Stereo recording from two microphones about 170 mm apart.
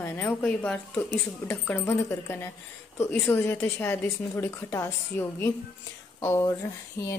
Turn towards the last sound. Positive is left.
turn(degrees=20)  # may be behind; listen again after turning